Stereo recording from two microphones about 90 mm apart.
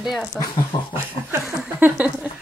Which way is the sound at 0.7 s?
55° left (ahead or behind).